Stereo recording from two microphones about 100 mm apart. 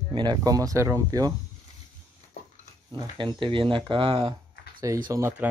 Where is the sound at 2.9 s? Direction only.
50° right (ahead or behind).